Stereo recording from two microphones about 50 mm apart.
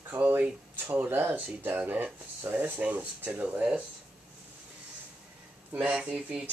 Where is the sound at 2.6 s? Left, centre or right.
Right.